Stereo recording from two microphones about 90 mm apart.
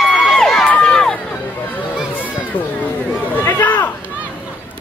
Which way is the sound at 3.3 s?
20° left (ahead or behind).